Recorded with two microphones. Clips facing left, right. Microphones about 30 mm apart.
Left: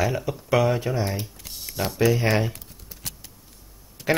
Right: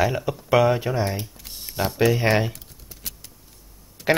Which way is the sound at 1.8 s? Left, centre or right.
Right.